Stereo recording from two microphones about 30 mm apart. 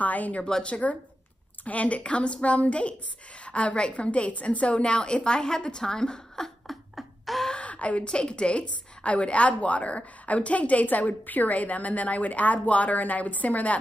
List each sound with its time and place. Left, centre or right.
0.0 s a woman's voice: left
0.7 s speech: left
1.6 s a woman's voice: left; by 6.5 s centre
6.7 s a sound: centre
7.5 s a sound: left
8.1 s a woman's voice: left